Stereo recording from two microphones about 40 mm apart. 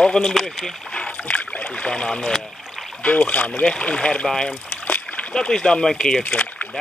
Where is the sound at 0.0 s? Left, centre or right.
Centre.